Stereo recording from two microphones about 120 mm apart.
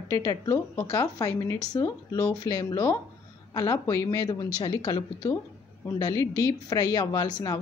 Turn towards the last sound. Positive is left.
turn(degrees=30)  # may be behind; listen again after turning